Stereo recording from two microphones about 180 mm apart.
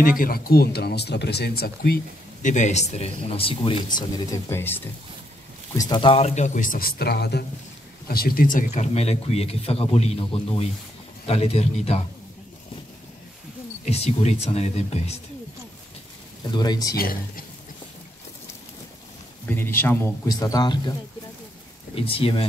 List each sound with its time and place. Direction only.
0.0 s speech: 50° left (ahead or behind)
2.4 s speech: 40° left (ahead or behind); by 4.8 s 10° left (ahead or behind)
5.8 s speech: 25° left (ahead or behind)
13.8 s speech: 35° left (ahead or behind)
16.5 s speech: 20° left (ahead or behind)
16.9 s speech: 55° left (ahead or behind)
19.4 s speech: 10° left (ahead or behind)
21.9 s speech: 30° left (ahead or behind)